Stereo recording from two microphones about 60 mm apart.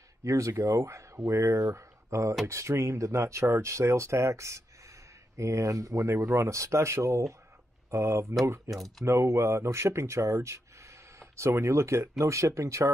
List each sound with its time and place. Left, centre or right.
0.2 s speech: right
8.6 s speech: centre
9.0 s speech: right